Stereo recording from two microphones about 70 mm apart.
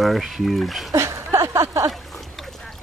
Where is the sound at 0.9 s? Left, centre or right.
Right.